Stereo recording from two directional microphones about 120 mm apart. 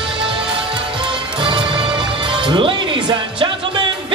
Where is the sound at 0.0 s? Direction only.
45° right (ahead or behind).